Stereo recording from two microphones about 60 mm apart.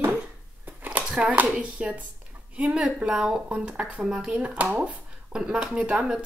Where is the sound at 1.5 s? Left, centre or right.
Right.